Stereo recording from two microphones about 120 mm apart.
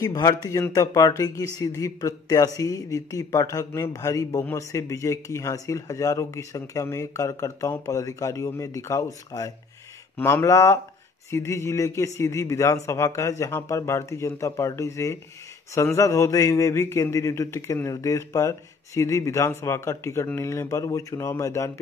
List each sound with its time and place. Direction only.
0.0 s speech: 30° left (ahead or behind)